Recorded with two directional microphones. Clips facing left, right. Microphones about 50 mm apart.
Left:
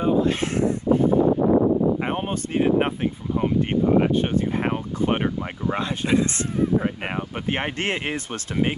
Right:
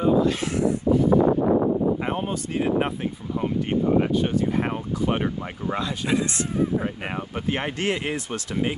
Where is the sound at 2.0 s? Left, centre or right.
Left.